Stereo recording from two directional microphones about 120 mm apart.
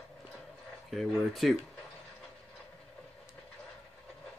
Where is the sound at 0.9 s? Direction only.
Centre (ahead or behind).